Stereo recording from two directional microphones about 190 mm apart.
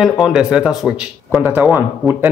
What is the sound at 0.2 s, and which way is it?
Speech, 5° right (ahead or behind).